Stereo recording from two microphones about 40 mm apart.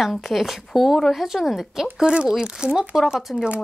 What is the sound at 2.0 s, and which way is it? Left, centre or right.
Speech, right.